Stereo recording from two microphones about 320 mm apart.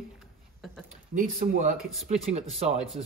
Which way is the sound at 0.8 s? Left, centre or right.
Right.